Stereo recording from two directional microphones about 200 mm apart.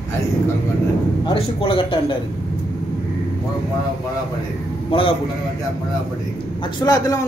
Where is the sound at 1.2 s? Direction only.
25° left (ahead or behind).